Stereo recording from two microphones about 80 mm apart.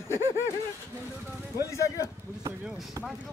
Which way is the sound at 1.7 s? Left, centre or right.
Left.